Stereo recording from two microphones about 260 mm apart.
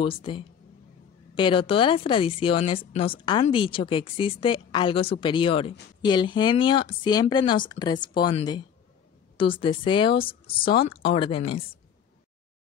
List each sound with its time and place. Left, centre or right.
0.0 s a woman's voice: centre